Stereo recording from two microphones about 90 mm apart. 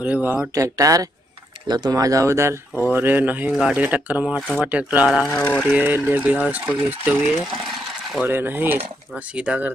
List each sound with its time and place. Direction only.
0.0 s speech: 20° right (ahead or behind)
0.6 s speech: 40° right (ahead or behind); by 5.3 s 5° right (ahead or behind)
5.7 s speech: 20° right (ahead or behind)
9.1 s speech: 10° right (ahead or behind)